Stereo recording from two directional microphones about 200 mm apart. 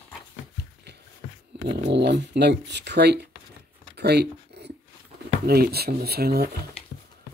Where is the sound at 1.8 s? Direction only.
60° right (ahead or behind).